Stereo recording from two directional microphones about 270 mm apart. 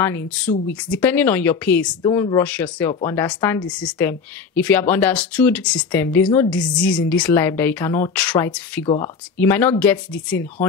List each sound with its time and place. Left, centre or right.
0.0 s speech: centre
8.8 s speech: centre
9.4 s speech: centre